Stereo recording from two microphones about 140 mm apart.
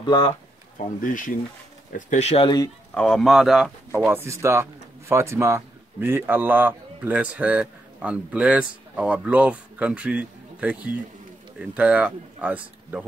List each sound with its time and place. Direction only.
0.0 s speech: 35° left (ahead or behind)
0.7 s speech: 70° left (ahead or behind); by 2.4 s 50° left (ahead or behind)
2.4 s speech: 30° left (ahead or behind)
2.9 s speech: 5° left (ahead or behind)
3.9 s speech: 15° right (ahead or behind)